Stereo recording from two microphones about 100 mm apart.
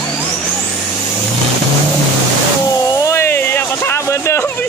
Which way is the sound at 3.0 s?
25° left (ahead or behind).